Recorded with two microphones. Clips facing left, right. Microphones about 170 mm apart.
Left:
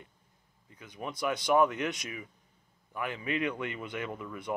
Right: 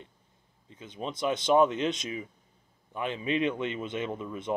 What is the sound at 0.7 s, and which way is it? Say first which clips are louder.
Speech: right 3 dB; 25° right (ahead or behind).